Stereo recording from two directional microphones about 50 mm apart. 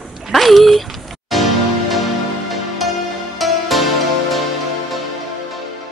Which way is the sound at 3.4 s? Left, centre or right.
Centre.